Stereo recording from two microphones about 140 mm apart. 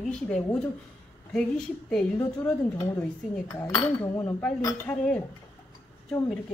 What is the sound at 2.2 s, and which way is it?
Speech, 20° left (ahead or behind).